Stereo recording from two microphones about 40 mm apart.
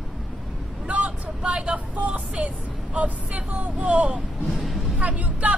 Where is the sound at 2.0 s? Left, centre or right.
Right.